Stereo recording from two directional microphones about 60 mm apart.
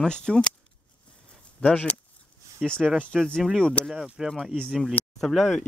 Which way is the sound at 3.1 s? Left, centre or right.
Centre.